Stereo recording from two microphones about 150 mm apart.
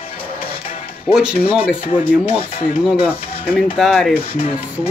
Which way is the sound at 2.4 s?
40° left (ahead or behind).